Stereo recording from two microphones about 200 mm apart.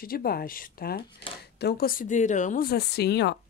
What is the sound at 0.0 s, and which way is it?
Speech, 50° left (ahead or behind).